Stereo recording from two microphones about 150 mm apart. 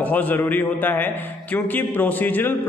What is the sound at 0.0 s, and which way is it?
A man's voice, 10° left (ahead or behind).